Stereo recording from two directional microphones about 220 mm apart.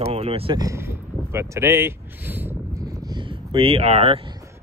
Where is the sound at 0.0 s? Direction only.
25° right (ahead or behind).